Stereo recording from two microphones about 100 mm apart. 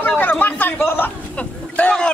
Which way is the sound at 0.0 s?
20° left (ahead or behind).